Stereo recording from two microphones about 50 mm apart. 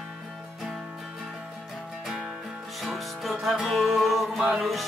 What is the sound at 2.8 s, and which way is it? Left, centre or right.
Music, centre.